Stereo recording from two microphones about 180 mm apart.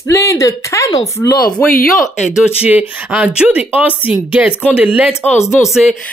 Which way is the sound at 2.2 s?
5° right (ahead or behind).